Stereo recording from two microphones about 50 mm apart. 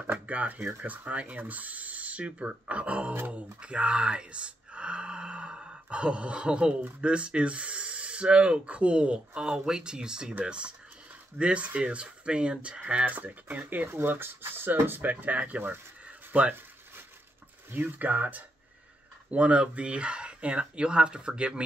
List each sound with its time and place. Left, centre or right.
0.1 s a sound: right
0.7 s speech: right
3.6 s a sound: right
7.0 s speech: right
13.9 s speech: right
17.8 s speech: right
19.3 s speech: right